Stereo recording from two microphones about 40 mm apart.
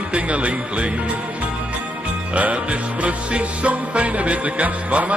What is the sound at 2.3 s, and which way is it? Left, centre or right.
Music, right.